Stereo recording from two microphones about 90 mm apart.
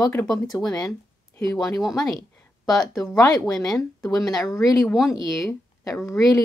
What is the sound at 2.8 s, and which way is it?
Speech, 40° left (ahead or behind).